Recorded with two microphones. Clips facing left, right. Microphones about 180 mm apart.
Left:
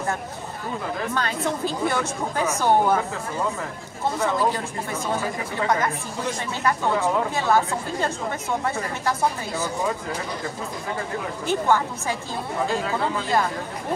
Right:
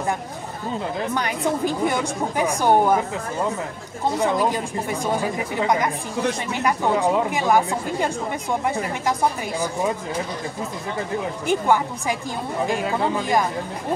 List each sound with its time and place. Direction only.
1.1 s speech: 15° right (ahead or behind)
4.2 s speech: 15° right (ahead or behind)
11.4 s speech: 15° right (ahead or behind)